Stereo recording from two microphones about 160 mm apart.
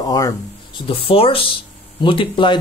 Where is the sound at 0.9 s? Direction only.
35° left (ahead or behind).